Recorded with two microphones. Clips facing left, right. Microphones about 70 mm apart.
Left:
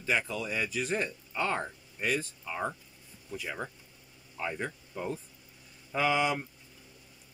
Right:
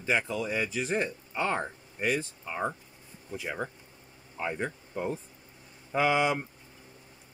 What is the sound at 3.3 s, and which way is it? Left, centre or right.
Speech, right.